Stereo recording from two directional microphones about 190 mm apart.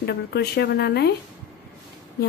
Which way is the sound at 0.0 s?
60° left (ahead or behind).